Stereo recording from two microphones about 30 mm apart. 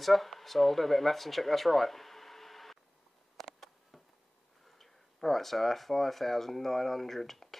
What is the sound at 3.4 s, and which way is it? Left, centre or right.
Insect, centre.